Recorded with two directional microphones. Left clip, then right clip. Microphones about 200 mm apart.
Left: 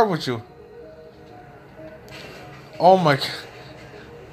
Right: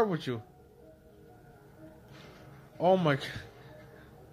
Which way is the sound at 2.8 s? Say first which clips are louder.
Left 11 dB; 30° right (ahead or behind).